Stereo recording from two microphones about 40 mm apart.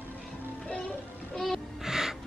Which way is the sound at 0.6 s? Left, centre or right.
Left.